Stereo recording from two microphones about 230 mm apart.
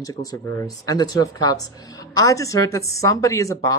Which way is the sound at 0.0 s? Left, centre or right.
Centre.